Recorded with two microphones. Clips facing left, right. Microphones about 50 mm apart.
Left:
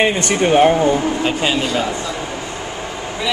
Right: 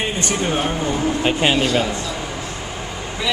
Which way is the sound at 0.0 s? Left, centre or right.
Left.